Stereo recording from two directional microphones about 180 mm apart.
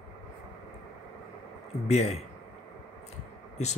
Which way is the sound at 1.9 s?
35° left (ahead or behind).